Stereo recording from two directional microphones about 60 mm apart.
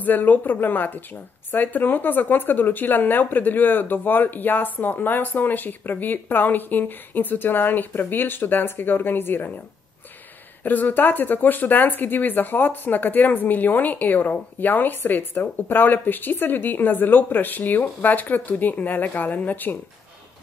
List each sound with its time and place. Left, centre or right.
0.0 s speech: left
10.6 s speech: left